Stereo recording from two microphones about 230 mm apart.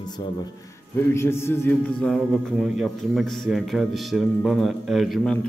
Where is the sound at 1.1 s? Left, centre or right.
Centre.